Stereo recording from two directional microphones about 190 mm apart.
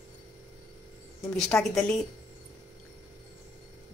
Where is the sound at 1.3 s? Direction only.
5° left (ahead or behind).